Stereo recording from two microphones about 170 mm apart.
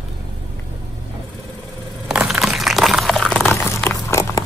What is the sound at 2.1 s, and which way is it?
Crunch, 5° right (ahead or behind).